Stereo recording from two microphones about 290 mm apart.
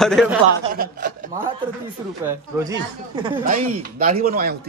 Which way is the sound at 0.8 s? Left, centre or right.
Right.